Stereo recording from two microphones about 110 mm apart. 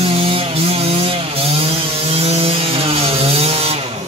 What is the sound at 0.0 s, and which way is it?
Chainsaw, 60° right (ahead or behind).